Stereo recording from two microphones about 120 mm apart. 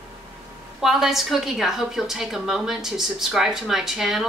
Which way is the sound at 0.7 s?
5° right (ahead or behind).